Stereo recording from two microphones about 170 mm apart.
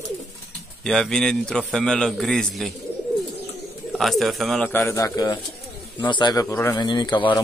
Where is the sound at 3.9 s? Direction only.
Centre (ahead or behind).